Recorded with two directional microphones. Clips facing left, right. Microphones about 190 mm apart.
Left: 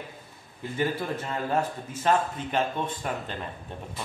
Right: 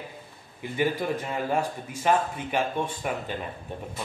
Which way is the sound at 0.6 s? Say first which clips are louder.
Right 2 dB; 15° right (ahead or behind).